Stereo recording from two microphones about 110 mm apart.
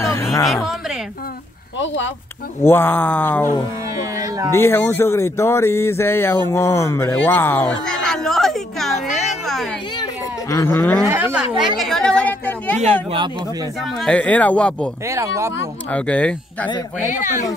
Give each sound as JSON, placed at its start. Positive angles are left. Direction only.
{"t": 0.0, "sound": "a sound", "side_deg": 30}
{"t": 2.6, "sound": "speech", "side_deg": 20}
{"t": 4.0, "sound": "cat", "side_deg": -30}
{"t": 4.6, "sound": "speech", "side_deg": 20}
{"t": 7.8, "sound": "a sound", "side_deg": 5}
{"t": 10.5, "sound": "speech", "side_deg": 25}
{"t": 11.1, "sound": "speech", "side_deg": -25}
{"t": 11.3, "sound": "a woman's voice", "side_deg": 0}
{"t": 13.9, "sound": "a woman's voice", "side_deg": 10}
{"t": 15.0, "sound": "speech", "side_deg": -25}
{"t": 15.9, "sound": "a woman's voice", "side_deg": 10}
{"t": 17.0, "sound": "speech", "side_deg": 90}